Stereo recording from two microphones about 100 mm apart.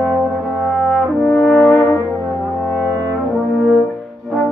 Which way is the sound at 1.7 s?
20° left (ahead or behind).